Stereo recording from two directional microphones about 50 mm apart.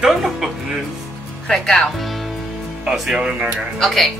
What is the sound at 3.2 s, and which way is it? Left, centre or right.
Speech, right.